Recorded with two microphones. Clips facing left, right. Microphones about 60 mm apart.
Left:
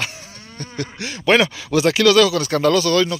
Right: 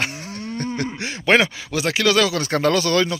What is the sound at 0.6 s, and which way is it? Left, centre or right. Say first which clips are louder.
Speech: right 1 dB; right.